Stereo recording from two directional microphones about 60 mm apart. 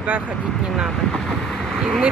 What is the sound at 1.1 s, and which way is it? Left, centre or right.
Speech, centre.